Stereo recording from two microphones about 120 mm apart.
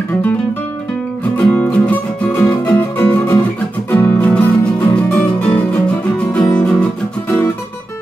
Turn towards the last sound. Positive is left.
turn(degrees=15)  # may be behind; listen again after turning